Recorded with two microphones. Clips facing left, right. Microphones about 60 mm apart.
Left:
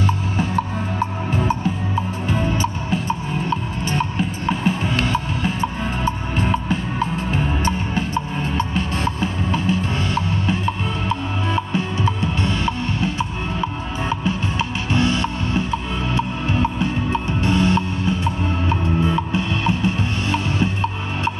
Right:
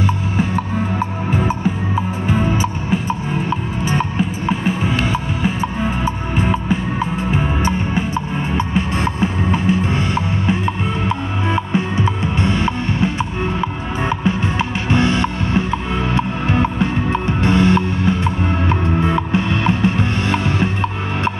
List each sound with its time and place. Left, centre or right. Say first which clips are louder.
2.2 s music: right 3 dB; centre; by 21.3 s right